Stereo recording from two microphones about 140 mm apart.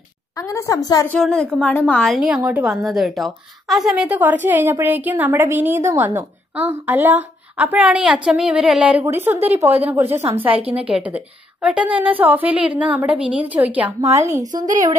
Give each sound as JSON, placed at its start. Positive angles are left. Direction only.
{"t": 0.4, "sound": "a woman's voice", "side_deg": 20}
{"t": 1.0, "sound": "a woman's voice", "side_deg": 5}
{"t": 2.0, "sound": "a woman's voice", "side_deg": -5}
{"t": 14.4, "sound": "speech", "side_deg": -30}